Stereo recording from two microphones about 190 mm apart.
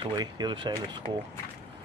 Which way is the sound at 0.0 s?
20° right (ahead or behind).